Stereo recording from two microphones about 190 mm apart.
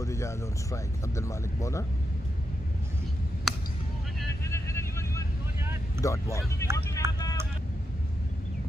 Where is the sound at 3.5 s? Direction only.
Centre (ahead or behind).